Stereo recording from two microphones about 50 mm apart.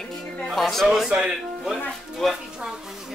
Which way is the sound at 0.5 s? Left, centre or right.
Centre.